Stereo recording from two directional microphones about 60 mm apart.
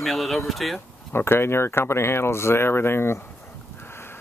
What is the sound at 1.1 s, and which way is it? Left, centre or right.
Speech, left.